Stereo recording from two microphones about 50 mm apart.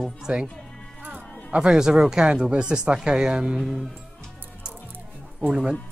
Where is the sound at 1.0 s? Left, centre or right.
Right.